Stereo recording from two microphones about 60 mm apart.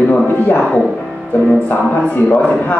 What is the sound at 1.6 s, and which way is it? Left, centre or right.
A man's voice, left.